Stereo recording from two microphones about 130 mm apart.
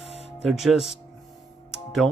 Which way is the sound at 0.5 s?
5° right (ahead or behind).